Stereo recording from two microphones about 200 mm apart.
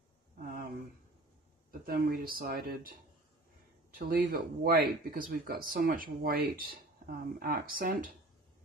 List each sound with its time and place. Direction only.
1.7 s speech: 45° right (ahead or behind)
3.9 s speech: 45° right (ahead or behind)